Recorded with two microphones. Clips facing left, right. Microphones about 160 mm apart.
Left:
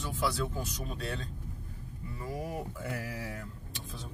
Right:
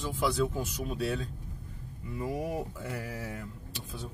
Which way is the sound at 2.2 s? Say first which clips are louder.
Right 5 dB; 20° right (ahead or behind).